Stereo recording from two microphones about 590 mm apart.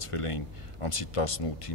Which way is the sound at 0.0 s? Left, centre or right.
Left.